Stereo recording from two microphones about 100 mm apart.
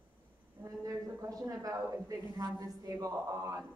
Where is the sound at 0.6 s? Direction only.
35° right (ahead or behind).